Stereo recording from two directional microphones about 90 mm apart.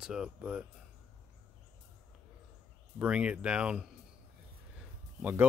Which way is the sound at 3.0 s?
10° right (ahead or behind).